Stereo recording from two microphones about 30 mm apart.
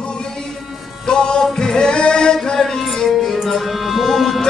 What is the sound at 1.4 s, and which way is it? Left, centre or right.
Singing, centre.